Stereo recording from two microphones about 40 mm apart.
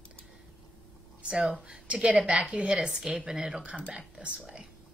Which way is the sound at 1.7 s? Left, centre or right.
Right.